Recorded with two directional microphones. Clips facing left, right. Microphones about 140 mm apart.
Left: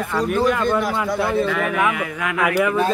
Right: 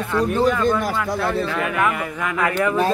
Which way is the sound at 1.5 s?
5° left (ahead or behind).